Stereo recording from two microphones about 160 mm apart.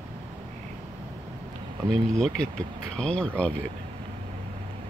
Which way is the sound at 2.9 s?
5° left (ahead or behind).